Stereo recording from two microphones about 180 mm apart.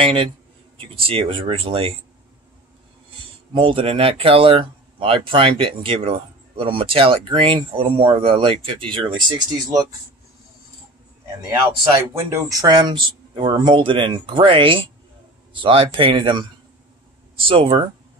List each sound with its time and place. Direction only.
0.0 s speech: 30° right (ahead or behind)
3.5 s speech: 30° right (ahead or behind)
12.1 s speech: 15° right (ahead or behind)